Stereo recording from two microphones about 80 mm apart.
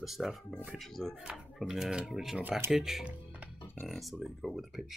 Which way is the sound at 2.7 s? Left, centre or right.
Centre.